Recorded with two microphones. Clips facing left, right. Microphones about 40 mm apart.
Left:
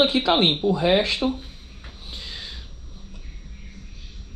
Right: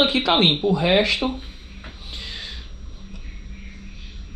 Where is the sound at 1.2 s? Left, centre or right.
Right.